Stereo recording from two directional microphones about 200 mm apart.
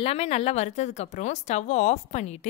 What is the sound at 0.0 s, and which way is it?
Speech, 30° left (ahead or behind).